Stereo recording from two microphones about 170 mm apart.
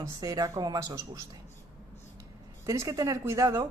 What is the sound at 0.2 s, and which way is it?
Speech, 20° right (ahead or behind).